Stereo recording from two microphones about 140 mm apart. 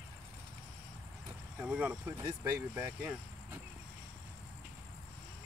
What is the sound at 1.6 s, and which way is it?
Speech, 10° right (ahead or behind).